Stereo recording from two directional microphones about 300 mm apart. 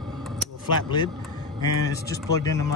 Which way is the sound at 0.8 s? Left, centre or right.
Centre.